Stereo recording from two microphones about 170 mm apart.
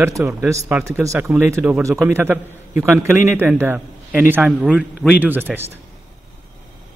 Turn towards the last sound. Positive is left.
turn(degrees=-10)  # may be behind; listen again after turning